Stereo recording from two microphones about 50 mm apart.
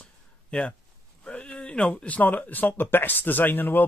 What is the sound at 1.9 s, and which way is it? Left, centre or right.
Speech, left.